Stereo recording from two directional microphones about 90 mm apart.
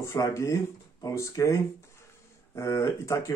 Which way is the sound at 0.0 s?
30° left (ahead or behind).